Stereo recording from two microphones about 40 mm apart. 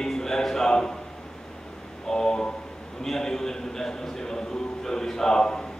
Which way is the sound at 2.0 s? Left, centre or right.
Centre.